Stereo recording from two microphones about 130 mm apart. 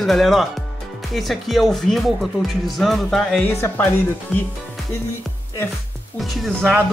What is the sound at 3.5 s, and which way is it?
Speech, 20° left (ahead or behind).